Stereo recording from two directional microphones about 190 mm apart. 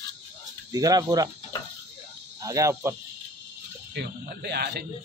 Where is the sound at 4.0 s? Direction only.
60° right (ahead or behind).